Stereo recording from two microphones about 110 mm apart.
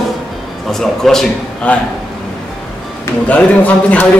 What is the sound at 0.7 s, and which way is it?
A man's voice, 5° left (ahead or behind).